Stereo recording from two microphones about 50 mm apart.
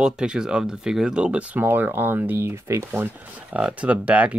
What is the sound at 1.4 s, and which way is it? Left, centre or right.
Speech, right.